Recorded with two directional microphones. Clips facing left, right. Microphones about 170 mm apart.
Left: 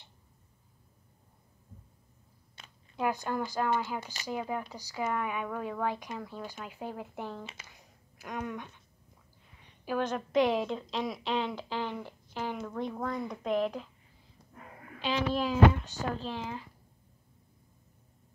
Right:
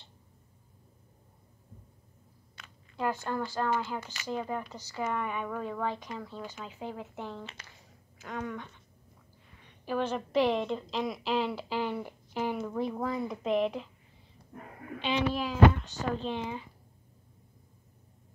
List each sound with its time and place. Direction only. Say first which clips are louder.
3.0 s speech: even; 15° left (ahead or behind)
9.8 s a woman's voice: even; centre (ahead or behind)
15.0 s a woman's voice: even; centre (ahead or behind)